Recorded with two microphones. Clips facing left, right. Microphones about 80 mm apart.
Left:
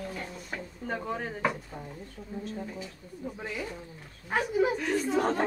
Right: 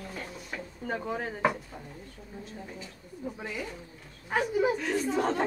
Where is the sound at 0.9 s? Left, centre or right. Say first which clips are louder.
Right 1 dB; centre.